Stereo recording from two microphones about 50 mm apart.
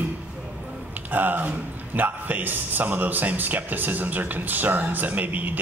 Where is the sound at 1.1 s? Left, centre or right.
Right.